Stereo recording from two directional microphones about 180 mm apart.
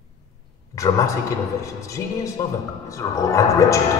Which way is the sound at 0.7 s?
20° left (ahead or behind).